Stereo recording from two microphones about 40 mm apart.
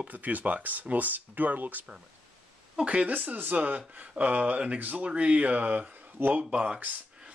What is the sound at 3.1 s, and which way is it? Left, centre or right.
Speech, right.